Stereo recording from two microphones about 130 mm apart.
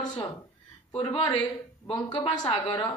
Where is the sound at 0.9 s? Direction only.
40° left (ahead or behind).